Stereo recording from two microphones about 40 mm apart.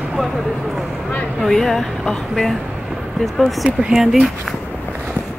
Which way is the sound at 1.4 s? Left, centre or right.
Centre.